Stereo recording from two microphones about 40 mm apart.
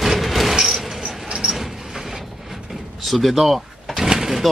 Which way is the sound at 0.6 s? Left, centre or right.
Centre.